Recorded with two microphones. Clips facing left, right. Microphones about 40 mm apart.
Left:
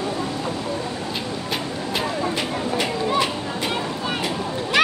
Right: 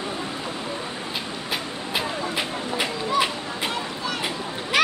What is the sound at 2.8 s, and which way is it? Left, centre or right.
Children playing, centre.